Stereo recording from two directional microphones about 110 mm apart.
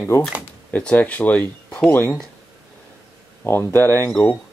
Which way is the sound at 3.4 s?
20° left (ahead or behind).